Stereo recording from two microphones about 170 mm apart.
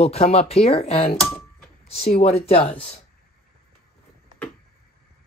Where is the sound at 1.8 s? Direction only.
35° left (ahead or behind).